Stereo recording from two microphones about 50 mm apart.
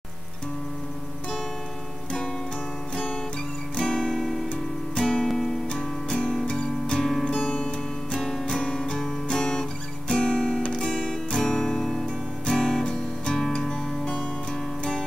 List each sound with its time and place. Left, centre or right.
3.7 s guitar: centre
4.2 s music: centre
4.9 s music: centre
5.3 s music: centre
5.7 s music: centre
7.0 s music: centre
7.2 s music: left; by 8.5 s centre
8.5 s guitar: centre
10.6 s music: centre
11.4 s music: centre